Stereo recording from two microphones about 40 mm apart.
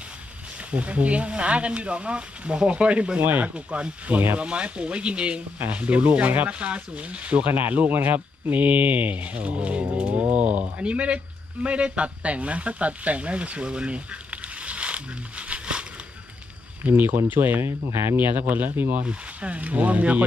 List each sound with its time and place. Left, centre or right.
0.7 s speech: right
3.2 s speech: right
3.5 s speech: right
7.4 s speech: right
16.8 s speech: right
17.6 s speech: right
18.1 s speech: right
19.0 s speech: right